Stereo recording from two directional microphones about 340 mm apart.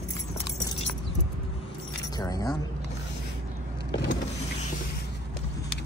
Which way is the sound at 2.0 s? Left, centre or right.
Centre.